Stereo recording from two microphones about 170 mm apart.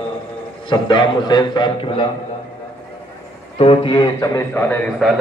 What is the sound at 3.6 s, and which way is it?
A man's voice, 30° left (ahead or behind).